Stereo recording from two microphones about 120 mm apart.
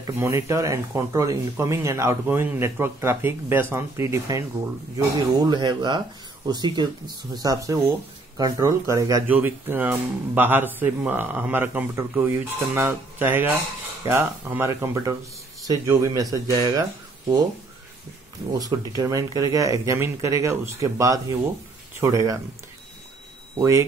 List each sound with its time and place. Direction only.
0.0 s speech: 25° right (ahead or behind)
9.3 s speech: 15° right (ahead or behind)
18.5 s speech: 35° right (ahead or behind)
23.5 s speech: 30° right (ahead or behind)